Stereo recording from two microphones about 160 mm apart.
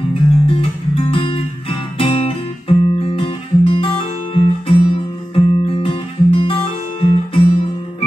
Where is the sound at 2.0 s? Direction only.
35° left (ahead or behind).